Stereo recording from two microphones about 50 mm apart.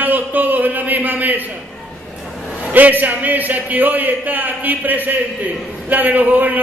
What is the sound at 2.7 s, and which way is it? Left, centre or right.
Speech, right.